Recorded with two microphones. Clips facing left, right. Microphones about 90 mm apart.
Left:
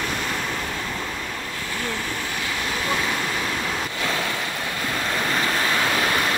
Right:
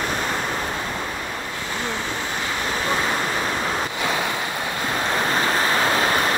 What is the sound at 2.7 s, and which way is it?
Waves, 35° right (ahead or behind).